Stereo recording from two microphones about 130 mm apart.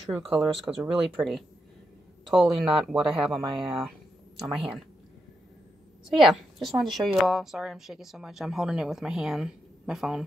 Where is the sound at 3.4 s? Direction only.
40° right (ahead or behind).